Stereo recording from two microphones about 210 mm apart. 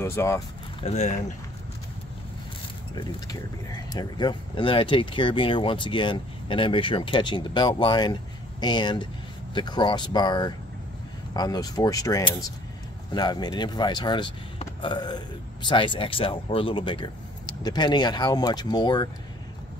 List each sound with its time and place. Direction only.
0.0 s speech: 15° left (ahead or behind)
0.7 s speech: 30° left (ahead or behind)
2.9 s speech: 20° left (ahead or behind)